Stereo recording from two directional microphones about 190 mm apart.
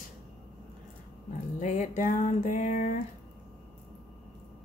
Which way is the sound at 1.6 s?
40° left (ahead or behind).